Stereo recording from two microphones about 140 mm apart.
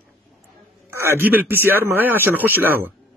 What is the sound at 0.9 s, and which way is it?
A man's voice, 15° right (ahead or behind).